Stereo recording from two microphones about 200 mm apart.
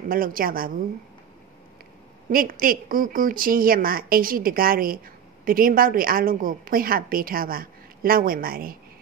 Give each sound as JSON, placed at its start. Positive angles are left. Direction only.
{"t": 0.1, "sound": "a woman's voice", "side_deg": -45}
{"t": 2.3, "sound": "a woman's voice", "side_deg": -45}